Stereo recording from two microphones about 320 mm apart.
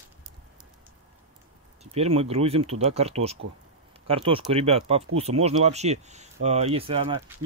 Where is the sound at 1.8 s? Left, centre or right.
Centre.